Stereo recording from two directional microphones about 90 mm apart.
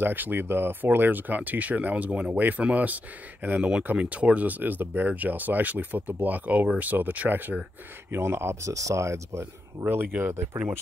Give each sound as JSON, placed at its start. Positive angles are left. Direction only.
{"t": 0.0, "sound": "speech", "side_deg": -20}